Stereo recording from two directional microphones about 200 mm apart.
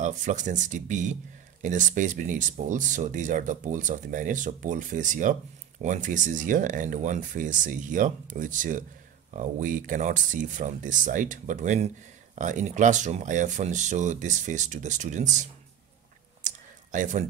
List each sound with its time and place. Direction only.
0.0 s speech: 35° right (ahead or behind)
16.4 s computer keyboard: 40° right (ahead or behind)